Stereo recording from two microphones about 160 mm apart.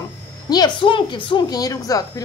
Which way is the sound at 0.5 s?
30° left (ahead or behind).